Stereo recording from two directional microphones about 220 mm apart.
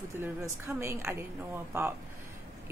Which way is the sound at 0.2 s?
10° right (ahead or behind).